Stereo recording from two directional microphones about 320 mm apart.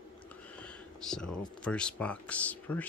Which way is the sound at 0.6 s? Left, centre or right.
Centre.